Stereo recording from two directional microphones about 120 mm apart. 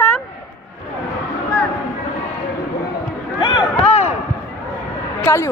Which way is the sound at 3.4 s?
40° left (ahead or behind).